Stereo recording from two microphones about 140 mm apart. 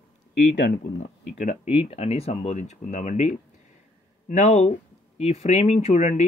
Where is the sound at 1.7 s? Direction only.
45° left (ahead or behind).